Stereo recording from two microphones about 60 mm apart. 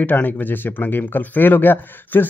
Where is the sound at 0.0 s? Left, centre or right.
Left.